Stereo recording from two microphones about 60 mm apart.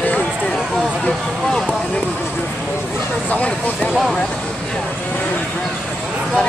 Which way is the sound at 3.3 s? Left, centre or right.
Left.